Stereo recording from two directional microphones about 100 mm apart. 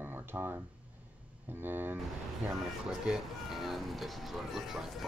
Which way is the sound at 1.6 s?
20° right (ahead or behind).